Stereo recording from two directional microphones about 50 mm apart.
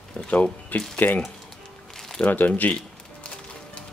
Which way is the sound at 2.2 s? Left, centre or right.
Left.